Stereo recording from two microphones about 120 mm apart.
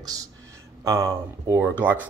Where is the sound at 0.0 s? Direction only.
30° right (ahead or behind).